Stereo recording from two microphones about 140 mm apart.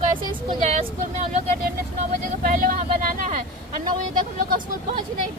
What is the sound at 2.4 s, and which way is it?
Speech, 75° right (ahead or behind).